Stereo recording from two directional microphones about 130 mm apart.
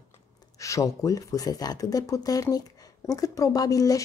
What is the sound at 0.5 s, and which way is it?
A woman's voice, 25° left (ahead or behind).